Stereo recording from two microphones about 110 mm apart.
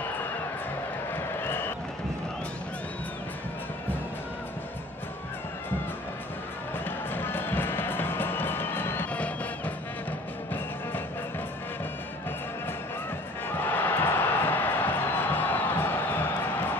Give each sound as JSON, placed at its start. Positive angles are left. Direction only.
{"t": 1.1, "sound": "crowd", "side_deg": 20}
{"t": 7.1, "sound": "music", "side_deg": 20}
{"t": 13.5, "sound": "music", "side_deg": 15}